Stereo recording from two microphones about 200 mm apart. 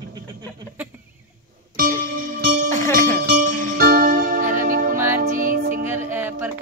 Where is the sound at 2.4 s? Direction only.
50° right (ahead or behind).